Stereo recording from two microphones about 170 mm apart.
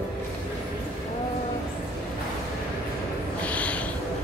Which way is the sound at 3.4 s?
10° left (ahead or behind).